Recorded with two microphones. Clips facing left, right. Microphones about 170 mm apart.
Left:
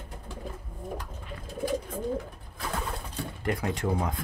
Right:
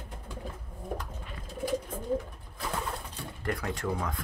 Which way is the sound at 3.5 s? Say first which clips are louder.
Left 3 dB; 20° left (ahead or behind).